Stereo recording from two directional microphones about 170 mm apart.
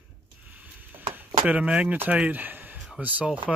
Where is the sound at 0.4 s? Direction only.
10° right (ahead or behind).